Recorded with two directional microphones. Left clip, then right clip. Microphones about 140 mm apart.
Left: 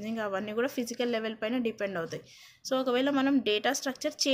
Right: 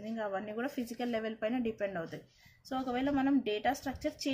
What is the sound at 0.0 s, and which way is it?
Speech, 35° left (ahead or behind).